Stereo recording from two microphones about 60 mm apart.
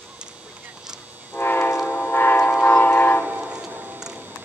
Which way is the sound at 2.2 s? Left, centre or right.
Left.